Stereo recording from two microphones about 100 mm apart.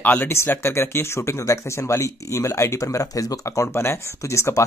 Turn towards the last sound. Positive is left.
turn(degrees=30)  # may be behind; listen again after turning